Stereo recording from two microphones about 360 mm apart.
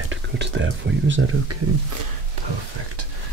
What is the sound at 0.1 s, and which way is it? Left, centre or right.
Speech, right.